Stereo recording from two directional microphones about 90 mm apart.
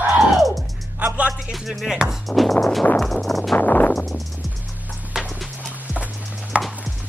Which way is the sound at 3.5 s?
20° left (ahead or behind).